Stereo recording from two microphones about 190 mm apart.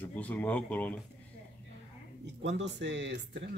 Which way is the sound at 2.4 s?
70° right (ahead or behind).